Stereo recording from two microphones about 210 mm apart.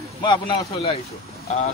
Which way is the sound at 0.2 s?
20° left (ahead or behind).